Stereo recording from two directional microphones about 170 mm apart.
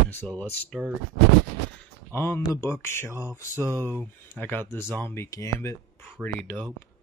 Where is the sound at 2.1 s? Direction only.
15° left (ahead or behind).